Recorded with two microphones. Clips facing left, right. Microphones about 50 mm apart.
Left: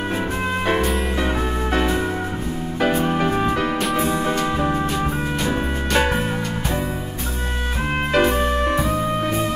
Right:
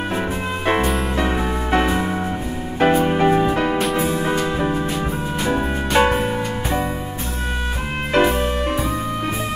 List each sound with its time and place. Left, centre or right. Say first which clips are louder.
2.8 s music: right 4 dB; centre
3.8 s music: right 1 dB; centre
8.2 s music: right 1 dB; centre